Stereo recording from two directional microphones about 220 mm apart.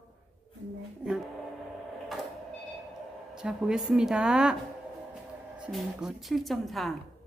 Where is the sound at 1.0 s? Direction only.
5° right (ahead or behind).